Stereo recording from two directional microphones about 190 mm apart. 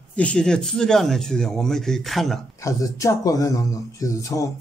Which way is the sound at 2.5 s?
15° left (ahead or behind).